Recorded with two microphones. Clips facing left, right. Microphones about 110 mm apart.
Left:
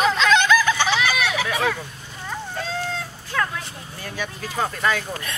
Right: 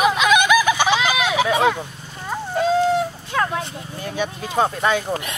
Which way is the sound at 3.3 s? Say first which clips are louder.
Right 4 dB; 25° right (ahead or behind).